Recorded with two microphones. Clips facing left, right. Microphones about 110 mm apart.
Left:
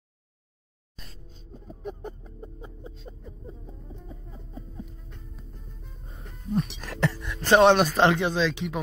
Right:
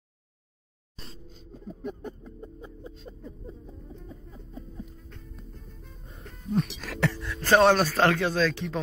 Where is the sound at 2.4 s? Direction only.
20° left (ahead or behind).